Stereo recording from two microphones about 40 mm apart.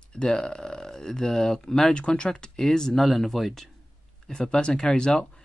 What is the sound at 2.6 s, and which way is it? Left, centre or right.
Speech, centre.